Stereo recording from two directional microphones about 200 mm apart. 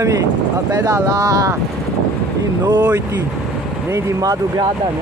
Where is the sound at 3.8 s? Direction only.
15° right (ahead or behind).